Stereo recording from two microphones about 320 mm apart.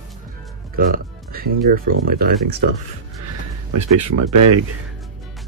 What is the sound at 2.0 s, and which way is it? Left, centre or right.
Speech, right.